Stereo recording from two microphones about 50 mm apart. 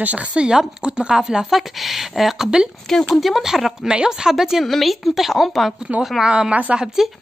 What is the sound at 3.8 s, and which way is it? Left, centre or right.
Speech, centre.